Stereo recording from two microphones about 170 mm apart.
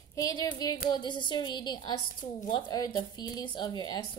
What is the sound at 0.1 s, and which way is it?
A woman's voice, 20° left (ahead or behind).